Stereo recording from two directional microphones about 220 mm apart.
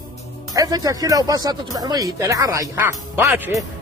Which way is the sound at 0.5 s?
15° right (ahead or behind).